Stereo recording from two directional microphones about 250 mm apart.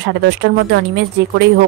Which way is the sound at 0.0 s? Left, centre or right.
Right.